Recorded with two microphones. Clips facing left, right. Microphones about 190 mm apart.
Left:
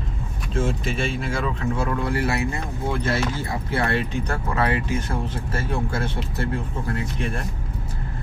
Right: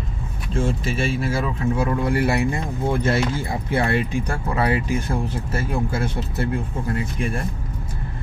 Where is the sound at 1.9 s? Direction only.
20° right (ahead or behind).